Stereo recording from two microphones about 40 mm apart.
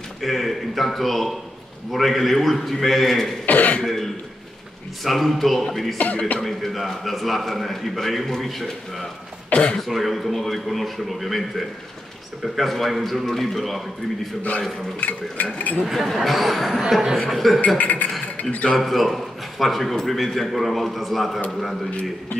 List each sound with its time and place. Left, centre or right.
0.2 s a man's voice: centre
3.4 s cough: left
3.8 s a man's voice: centre
5.9 s speech: left
6.4 s a man's voice: centre
9.5 s speech: left
9.8 s a man's voice: centre
15.0 s speech: left
15.8 s a man's voice: centre
17.7 s speech: left
18.8 s a man's voice: centre